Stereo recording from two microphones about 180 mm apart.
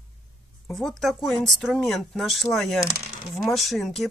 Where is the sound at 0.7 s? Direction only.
Centre (ahead or behind).